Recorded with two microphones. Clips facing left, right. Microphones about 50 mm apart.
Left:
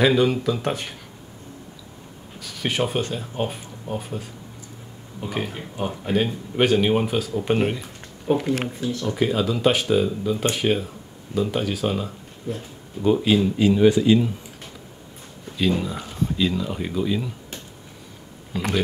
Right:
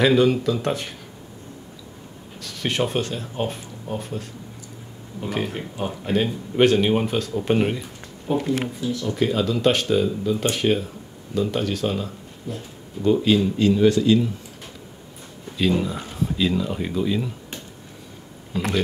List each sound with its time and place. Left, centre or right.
0.0 s speech: centre
2.4 s speech: centre
8.3 s speech: left
9.0 s speech: centre
15.5 s speech: centre
18.5 s speech: centre